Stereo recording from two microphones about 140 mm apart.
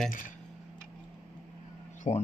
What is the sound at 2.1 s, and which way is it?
Speech, 50° left (ahead or behind).